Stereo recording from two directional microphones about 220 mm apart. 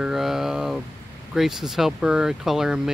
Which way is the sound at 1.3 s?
Centre (ahead or behind).